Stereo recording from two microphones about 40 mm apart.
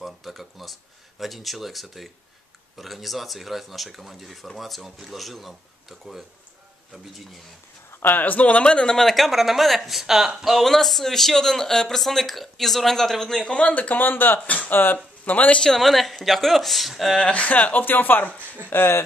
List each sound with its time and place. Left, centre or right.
0.0 s a sound: centre
1.2 s speech: centre
8.0 s speech: left
8.6 s speech: left
8.9 s speech: centre
10.6 s speech: centre
13.5 s speech: left
14.4 s speech: left
14.7 s speech: left
15.2 s speech: left
15.6 s speech: centre
17.3 s speech: left
18.7 s speech: left